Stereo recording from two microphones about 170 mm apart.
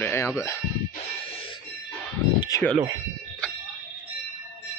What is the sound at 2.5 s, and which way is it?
Speech, 20° left (ahead or behind).